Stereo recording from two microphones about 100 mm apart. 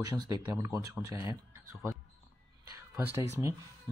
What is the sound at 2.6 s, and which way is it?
Music, 35° right (ahead or behind).